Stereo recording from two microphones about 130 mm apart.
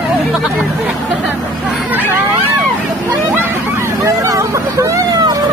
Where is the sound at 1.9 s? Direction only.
15° right (ahead or behind).